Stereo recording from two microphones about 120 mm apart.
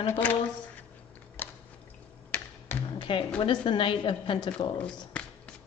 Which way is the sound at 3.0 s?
45° left (ahead or behind).